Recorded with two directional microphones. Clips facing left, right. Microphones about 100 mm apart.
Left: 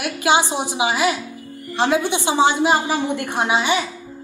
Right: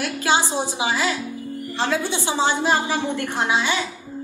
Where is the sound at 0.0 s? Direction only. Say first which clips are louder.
Left 3 dB; 15° left (ahead or behind).